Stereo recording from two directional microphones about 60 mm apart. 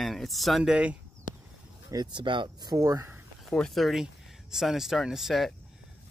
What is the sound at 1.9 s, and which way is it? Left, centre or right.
Speech, right.